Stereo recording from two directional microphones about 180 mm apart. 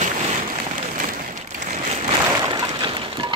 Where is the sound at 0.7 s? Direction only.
45° right (ahead or behind).